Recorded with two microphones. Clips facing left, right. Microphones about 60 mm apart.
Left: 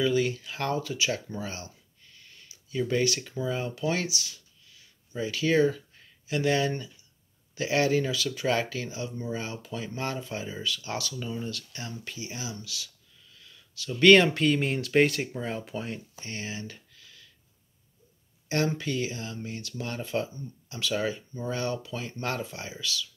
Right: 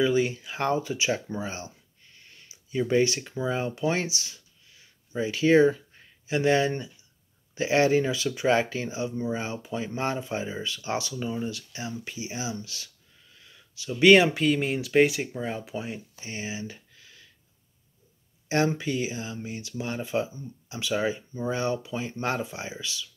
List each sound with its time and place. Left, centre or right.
0.0 s speech: right
16.9 s a sound: right
18.5 s speech: right